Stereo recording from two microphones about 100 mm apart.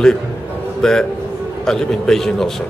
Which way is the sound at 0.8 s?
5° left (ahead or behind).